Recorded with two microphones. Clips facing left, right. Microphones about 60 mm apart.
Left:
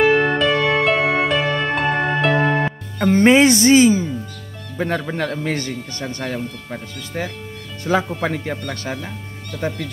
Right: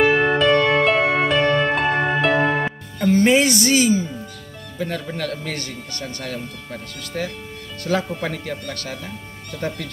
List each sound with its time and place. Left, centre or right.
0.0 s music: centre
3.0 s speech: left
9.5 s speech: centre